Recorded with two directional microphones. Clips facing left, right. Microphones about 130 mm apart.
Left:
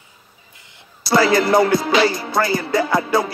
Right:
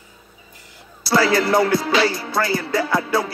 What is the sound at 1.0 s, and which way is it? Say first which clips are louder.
Music: left 2 dB; 15° left (ahead or behind).